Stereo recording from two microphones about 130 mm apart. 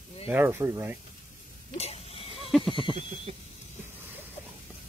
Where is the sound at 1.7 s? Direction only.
50° left (ahead or behind).